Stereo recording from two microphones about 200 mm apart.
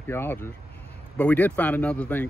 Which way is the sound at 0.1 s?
10° left (ahead or behind).